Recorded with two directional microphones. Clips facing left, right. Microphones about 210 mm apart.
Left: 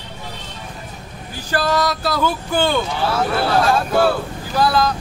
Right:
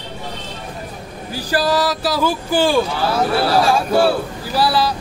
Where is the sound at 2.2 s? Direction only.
30° right (ahead or behind).